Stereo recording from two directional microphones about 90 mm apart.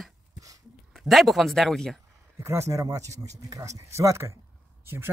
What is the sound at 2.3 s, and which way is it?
Speech, 30° right (ahead or behind).